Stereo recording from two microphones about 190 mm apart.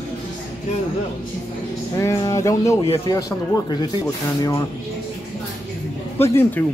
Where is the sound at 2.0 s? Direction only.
15° left (ahead or behind).